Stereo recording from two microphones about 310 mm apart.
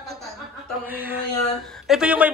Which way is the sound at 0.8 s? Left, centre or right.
Centre.